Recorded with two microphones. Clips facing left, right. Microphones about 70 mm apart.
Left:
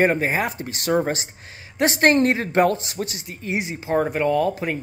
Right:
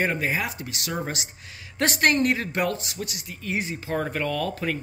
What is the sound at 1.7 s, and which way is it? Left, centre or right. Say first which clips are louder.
Speech: left 5 dB; left.